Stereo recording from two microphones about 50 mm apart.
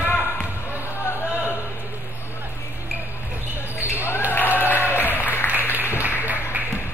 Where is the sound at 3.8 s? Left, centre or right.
Right.